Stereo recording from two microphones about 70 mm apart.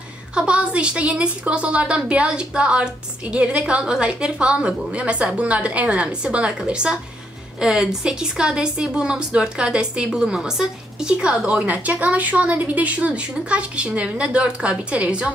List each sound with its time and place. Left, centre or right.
0.3 s speech: centre